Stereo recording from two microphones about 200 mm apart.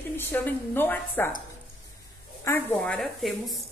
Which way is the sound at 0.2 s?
10° left (ahead or behind).